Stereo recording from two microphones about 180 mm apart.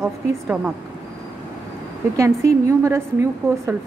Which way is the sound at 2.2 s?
15° right (ahead or behind).